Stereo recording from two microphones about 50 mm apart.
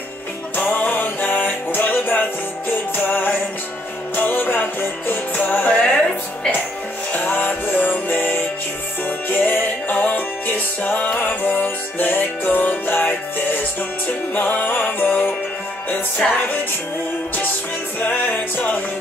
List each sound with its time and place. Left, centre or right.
0.6 s music: left
7.1 s music: left
17.9 s music: left